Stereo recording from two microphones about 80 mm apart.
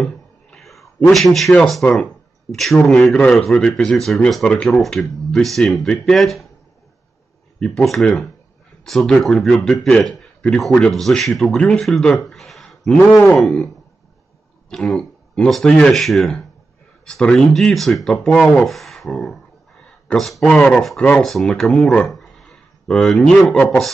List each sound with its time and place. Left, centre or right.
0.0 s a sound: centre
1.1 s speech: centre
7.6 s speech: centre
11.5 s speech: centre
11.8 s speech: centre
12.1 s a sound: centre
13.4 s speech: centre
20.4 s speech: centre